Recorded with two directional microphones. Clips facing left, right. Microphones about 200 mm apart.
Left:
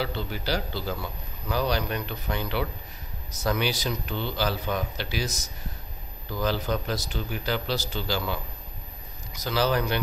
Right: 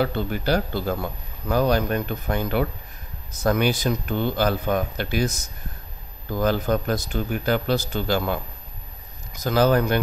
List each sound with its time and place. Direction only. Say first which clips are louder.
0.0 s a man's voice: right 7 dB; 50° right (ahead or behind)